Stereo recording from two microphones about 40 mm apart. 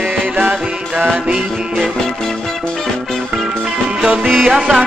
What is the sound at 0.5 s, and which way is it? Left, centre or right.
Music, right.